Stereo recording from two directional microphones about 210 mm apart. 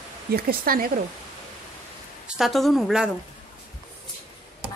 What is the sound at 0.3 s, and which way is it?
Speech, 45° right (ahead or behind).